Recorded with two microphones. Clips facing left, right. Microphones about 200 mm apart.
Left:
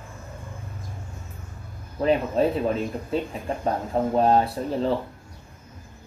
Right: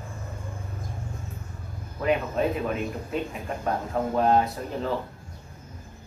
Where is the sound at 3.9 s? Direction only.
30° left (ahead or behind).